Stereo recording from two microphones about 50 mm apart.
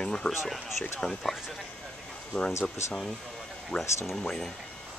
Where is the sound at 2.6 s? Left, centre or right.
Left.